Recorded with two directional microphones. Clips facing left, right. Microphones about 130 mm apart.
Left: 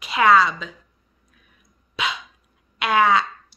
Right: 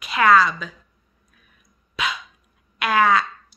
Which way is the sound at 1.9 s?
25° left (ahead or behind).